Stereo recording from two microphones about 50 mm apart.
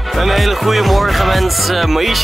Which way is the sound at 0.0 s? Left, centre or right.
Centre.